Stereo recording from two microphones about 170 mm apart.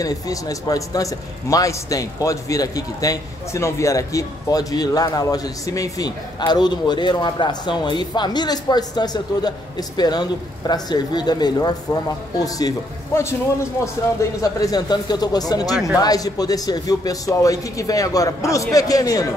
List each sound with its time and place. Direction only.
0.0 s a man's voice: 20° left (ahead or behind)